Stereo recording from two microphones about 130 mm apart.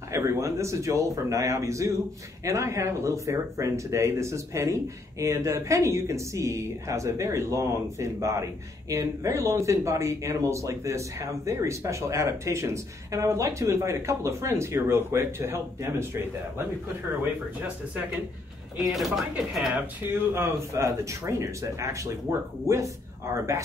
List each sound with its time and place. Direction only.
0.1 s speech: 20° right (ahead or behind)
18.8 s speech: centre (ahead or behind)
19.7 s speech: 20° right (ahead or behind)